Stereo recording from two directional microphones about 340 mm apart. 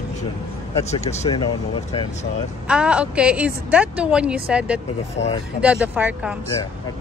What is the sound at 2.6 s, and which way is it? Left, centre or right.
A woman's voice, centre.